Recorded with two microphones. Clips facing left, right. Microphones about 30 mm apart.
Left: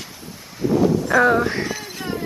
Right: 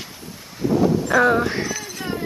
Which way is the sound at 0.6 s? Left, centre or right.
Centre.